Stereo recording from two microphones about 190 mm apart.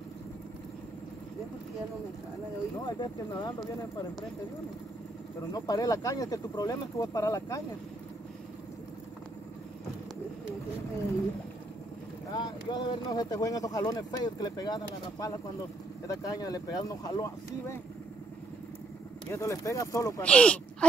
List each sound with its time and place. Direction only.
3.0 s speech: 20° left (ahead or behind)
5.5 s speech: 20° left (ahead or behind)
12.4 s speech: 20° left (ahead or behind)
19.3 s speech: 15° left (ahead or behind)